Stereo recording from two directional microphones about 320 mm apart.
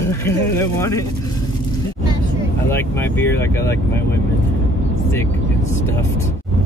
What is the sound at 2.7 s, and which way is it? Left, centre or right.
Speech, centre.